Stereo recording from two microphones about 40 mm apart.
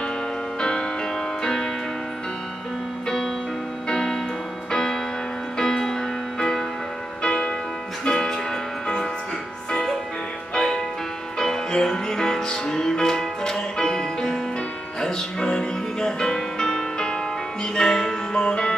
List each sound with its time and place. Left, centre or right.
0.6 s music: centre
3.9 s music: centre
7.2 s music: left